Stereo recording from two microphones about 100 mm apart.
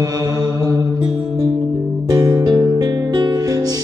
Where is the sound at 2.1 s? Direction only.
40° right (ahead or behind).